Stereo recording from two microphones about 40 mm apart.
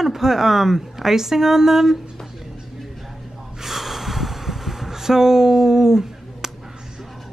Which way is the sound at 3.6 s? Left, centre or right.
Centre.